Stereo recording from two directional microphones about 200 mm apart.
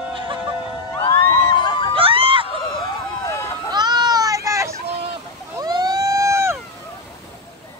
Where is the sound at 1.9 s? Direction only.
25° right (ahead or behind).